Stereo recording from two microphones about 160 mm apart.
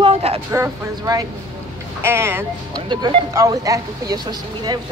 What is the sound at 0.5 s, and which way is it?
Speech, 20° right (ahead or behind).